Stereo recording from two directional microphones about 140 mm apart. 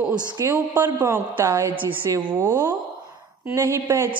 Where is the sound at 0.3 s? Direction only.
20° right (ahead or behind).